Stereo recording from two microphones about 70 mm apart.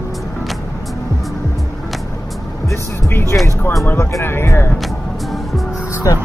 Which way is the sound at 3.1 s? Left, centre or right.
Left.